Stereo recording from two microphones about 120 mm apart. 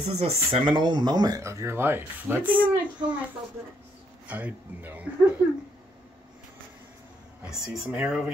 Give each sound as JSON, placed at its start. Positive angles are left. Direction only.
{"t": 0.0, "sound": "speech", "side_deg": -60}
{"t": 1.4, "sound": "speech", "side_deg": -25}
{"t": 4.3, "sound": "speech", "side_deg": -15}
{"t": 7.4, "sound": "speech", "side_deg": -5}